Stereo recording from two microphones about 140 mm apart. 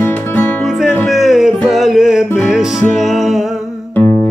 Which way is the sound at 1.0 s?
Centre (ahead or behind).